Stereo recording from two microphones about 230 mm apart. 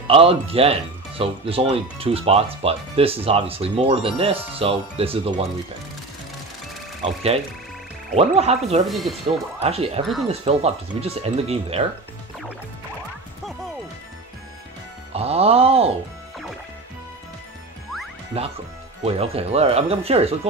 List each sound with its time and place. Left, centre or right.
0.0 s speech: right
7.0 s speech: right
8.8 s speech: centre
9.6 s speech: right
15.1 s speech: right
18.3 s speech: right